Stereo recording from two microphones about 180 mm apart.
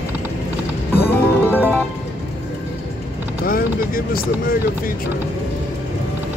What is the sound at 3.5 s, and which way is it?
Speech, 55° left (ahead or behind).